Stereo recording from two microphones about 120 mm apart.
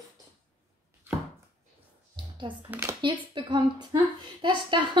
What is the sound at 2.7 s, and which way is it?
Speech, 20° right (ahead or behind).